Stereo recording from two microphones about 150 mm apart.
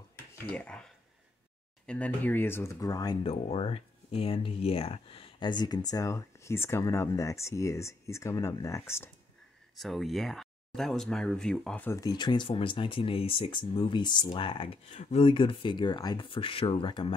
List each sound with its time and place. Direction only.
0.5 s speech: 10° left (ahead or behind)
1.9 s speech: 10° left (ahead or behind)
3.3 s speech: 40° left (ahead or behind); by 9.1 s 15° left (ahead or behind)
9.8 s speech: centre (ahead or behind)
11.9 s speech: 25° left (ahead or behind)